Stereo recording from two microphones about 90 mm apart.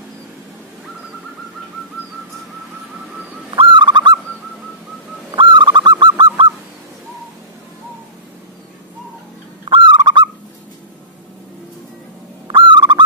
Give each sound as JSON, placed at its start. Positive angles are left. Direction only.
{"t": 3.5, "sound": "owl", "side_deg": -60}
{"t": 5.3, "sound": "owl", "side_deg": -60}
{"t": 9.7, "sound": "owl", "side_deg": -60}
{"t": 12.4, "sound": "owl", "side_deg": -60}